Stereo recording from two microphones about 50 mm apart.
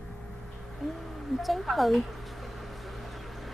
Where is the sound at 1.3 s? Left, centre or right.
Centre.